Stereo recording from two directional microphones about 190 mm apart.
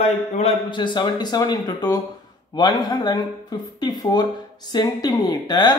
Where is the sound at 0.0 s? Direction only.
30° left (ahead or behind).